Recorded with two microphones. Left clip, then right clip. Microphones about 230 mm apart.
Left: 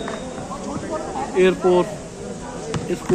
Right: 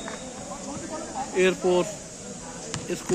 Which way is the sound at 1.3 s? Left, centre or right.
Right.